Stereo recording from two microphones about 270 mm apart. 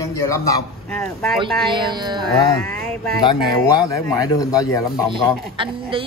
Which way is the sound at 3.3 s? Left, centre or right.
Centre.